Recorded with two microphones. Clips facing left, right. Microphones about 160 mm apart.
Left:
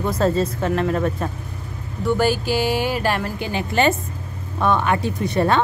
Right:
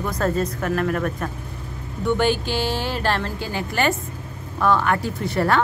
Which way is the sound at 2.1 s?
5° left (ahead or behind).